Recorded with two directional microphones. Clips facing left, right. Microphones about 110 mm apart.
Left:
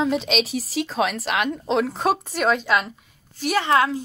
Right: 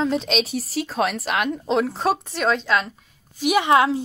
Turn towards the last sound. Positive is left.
turn(degrees=-20)  # may be behind; listen again after turning